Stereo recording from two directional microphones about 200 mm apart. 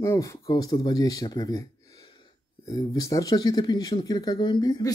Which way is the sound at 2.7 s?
15° left (ahead or behind).